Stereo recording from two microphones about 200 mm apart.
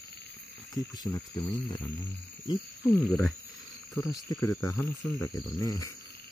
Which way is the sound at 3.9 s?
15° left (ahead or behind).